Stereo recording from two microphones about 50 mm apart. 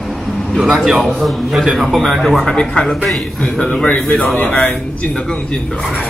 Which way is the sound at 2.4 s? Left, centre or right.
Centre.